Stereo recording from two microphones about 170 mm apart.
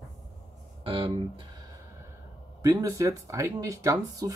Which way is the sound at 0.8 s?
30° right (ahead or behind).